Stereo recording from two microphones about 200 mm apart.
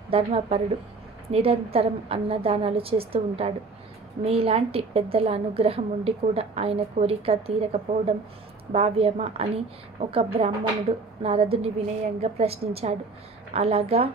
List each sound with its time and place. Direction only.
0.1 s a woman's voice: 30° right (ahead or behind)